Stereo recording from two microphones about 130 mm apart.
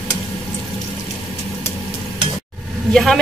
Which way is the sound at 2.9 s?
Centre (ahead or behind).